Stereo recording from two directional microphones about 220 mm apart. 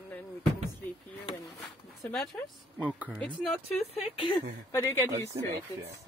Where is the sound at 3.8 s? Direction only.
25° left (ahead or behind).